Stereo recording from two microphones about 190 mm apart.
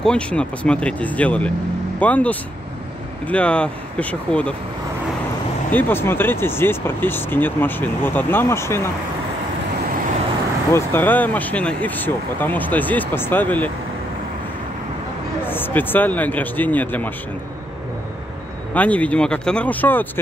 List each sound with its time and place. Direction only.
0.0 s speech: 5° left (ahead or behind)
5.7 s speech: 10° left (ahead or behind)
10.7 s speech: 10° left (ahead or behind)
15.4 s speech: 10° left (ahead or behind)
18.7 s speech: 5° left (ahead or behind)